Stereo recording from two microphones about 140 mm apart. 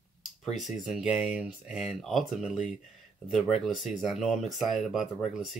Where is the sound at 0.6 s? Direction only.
Centre (ahead or behind).